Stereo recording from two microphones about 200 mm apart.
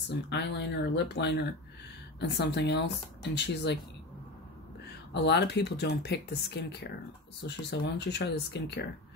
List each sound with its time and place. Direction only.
0.1 s speech: 55° left (ahead or behind)
5.1 s speech: 60° left (ahead or behind)